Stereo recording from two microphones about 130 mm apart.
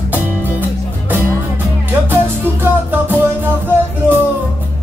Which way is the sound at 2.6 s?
15° right (ahead or behind).